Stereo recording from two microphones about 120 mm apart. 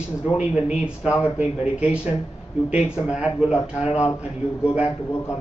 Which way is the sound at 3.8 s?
65° left (ahead or behind).